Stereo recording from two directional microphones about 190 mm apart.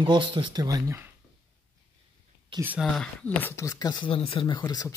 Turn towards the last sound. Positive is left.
turn(degrees=20)  # may be behind; listen again after turning